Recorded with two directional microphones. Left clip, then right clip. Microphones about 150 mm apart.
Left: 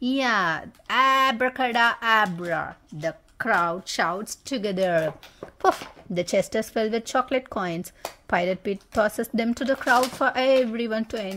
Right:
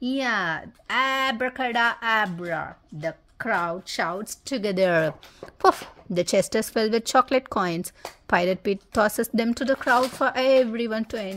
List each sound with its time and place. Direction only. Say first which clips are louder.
0.0 s speech: left 2 dB; 5° left (ahead or behind)
4.6 s speech: right 2 dB; 20° right (ahead or behind)
5.6 s speech: right 2 dB; 20° right (ahead or behind)